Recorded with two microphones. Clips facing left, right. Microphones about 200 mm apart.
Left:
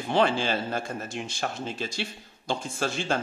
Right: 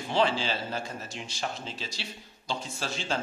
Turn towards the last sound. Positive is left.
turn(degrees=50)  # may be behind; listen again after turning